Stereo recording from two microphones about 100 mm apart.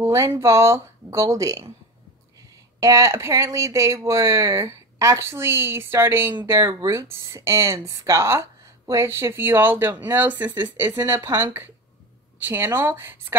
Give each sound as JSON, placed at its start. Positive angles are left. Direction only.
{"t": 0.0, "sound": "speech", "side_deg": -30}
{"t": 2.8, "sound": "speech", "side_deg": -30}